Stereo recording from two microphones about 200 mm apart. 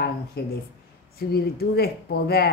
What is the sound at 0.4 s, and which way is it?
Speech, 50° left (ahead or behind).